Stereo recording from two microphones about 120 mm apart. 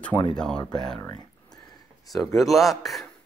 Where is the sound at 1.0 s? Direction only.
30° left (ahead or behind).